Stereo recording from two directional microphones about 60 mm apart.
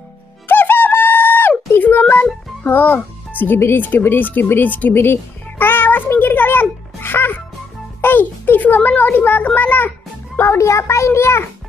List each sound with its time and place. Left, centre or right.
0.5 s bird: left
1.7 s a sound: left
2.6 s music: left
8.0 s a child's voice: left
10.4 s a child's voice: left